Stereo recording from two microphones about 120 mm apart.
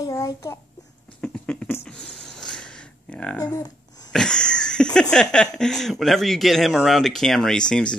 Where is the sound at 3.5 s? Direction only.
30° left (ahead or behind).